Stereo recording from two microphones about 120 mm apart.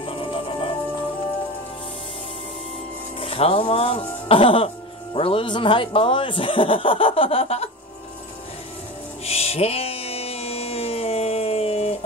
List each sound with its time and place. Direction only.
0.0 s music: 45° left (ahead or behind)
3.2 s a man's voice: 50° left (ahead or behind)
9.2 s music: 60° left (ahead or behind)